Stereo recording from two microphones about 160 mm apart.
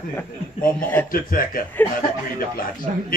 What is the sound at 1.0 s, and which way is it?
Speech, 60° left (ahead or behind).